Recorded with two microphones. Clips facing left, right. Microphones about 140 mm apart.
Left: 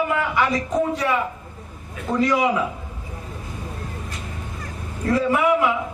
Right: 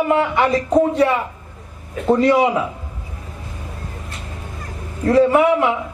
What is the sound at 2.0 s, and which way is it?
Speech, 30° right (ahead or behind).